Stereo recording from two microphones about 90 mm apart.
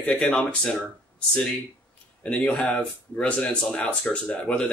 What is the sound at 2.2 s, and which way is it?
Speech, 10° left (ahead or behind).